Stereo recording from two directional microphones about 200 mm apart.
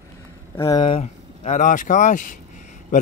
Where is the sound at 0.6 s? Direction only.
20° left (ahead or behind).